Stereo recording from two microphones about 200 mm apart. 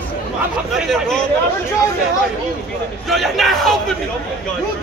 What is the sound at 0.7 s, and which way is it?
Speech, centre (ahead or behind).